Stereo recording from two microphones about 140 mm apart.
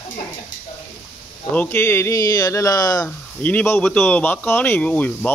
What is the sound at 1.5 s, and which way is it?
Speech, 15° left (ahead or behind).